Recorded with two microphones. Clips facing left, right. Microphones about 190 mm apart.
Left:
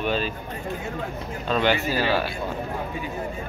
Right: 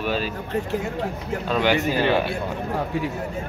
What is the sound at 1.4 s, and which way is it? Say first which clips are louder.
Speech: right 1 dB; 10° right (ahead or behind).